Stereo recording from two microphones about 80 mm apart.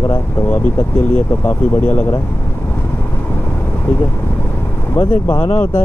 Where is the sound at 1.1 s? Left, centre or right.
Left.